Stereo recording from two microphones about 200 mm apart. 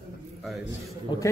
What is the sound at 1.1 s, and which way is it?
Speech, 25° left (ahead or behind).